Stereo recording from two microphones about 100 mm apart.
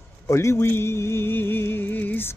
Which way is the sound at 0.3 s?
30° left (ahead or behind).